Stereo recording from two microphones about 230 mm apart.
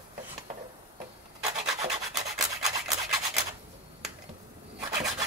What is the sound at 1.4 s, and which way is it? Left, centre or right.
Rub, right.